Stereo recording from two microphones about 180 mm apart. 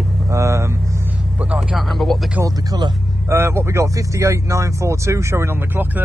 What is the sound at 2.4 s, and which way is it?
Speech, 20° right (ahead or behind).